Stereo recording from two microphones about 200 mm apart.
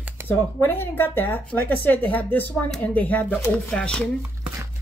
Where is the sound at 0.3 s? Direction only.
10° left (ahead or behind).